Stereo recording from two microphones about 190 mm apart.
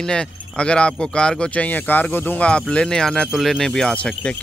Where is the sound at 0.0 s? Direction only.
5° left (ahead or behind).